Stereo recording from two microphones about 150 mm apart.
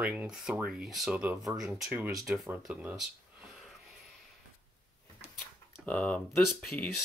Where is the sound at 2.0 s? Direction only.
20° right (ahead or behind).